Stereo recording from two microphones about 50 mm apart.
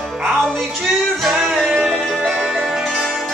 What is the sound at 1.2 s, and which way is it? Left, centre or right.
Music, centre.